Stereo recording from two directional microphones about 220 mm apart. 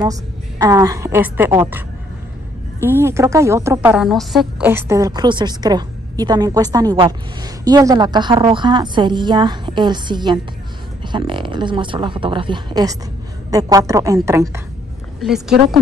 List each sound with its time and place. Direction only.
0.0 s a woman's voice: 15° right (ahead or behind)
2.8 s a woman's voice: 10° right (ahead or behind)
15.1 s speech: centre (ahead or behind)